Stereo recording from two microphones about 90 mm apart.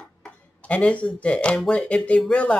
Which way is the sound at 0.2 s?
15° left (ahead or behind).